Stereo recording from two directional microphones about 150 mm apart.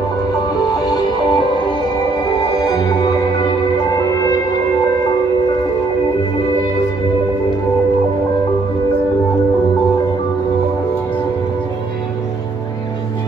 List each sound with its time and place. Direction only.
0.8 s music: 25° left (ahead or behind)
2.4 s music: 25° left (ahead or behind)